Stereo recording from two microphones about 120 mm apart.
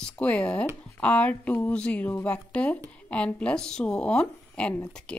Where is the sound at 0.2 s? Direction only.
10° left (ahead or behind).